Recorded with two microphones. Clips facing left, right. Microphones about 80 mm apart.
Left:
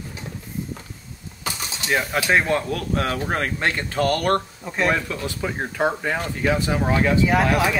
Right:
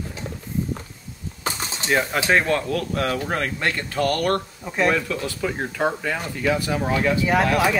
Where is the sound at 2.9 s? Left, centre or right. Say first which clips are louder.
Left 3 dB; left.